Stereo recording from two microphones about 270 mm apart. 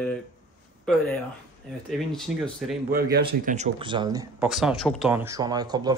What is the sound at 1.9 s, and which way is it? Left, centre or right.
Speech, centre.